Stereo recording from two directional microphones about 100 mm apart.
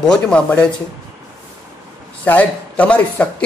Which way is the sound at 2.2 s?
15° left (ahead or behind).